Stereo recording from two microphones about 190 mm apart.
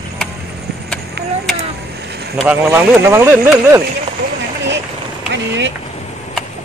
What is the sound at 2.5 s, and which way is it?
Speech, 15° right (ahead or behind).